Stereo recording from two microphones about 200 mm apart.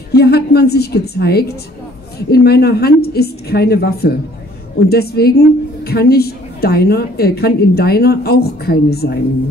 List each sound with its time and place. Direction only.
0.1 s a woman's voice: 55° left (ahead or behind)